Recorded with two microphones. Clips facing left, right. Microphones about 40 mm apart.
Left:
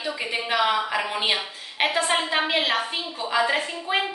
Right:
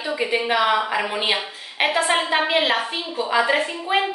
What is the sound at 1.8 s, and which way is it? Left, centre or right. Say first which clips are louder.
A woman's voice: right 3 dB; right.